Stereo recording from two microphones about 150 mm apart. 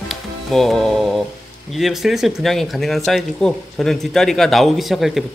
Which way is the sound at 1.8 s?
Centre (ahead or behind).